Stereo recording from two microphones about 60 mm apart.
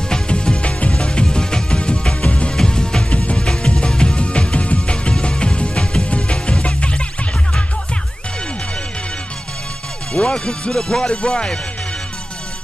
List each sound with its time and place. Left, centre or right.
0.1 s music: centre
10.1 s speech: centre